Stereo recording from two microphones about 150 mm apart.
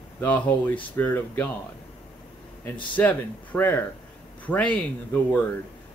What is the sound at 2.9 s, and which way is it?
A man's voice, 10° left (ahead or behind).